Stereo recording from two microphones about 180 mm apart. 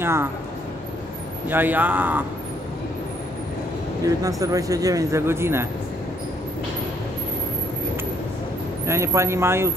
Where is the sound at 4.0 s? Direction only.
20° right (ahead or behind).